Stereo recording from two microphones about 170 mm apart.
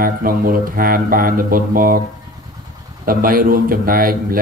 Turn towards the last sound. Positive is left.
turn(degrees=-55)  # may be behind; listen again after turning